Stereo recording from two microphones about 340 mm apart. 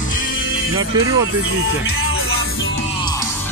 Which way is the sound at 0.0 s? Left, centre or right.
Left.